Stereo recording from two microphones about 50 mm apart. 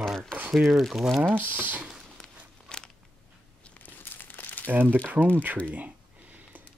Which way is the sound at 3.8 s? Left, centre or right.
Left.